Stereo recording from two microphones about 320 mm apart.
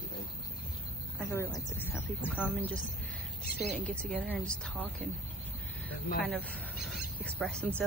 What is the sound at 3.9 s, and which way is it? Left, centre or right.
A woman's voice, centre.